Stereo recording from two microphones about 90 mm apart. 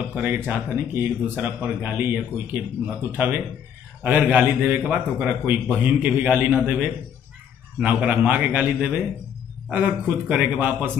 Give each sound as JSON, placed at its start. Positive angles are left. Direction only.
{"t": 0.1, "sound": "a man's voice", "side_deg": -20}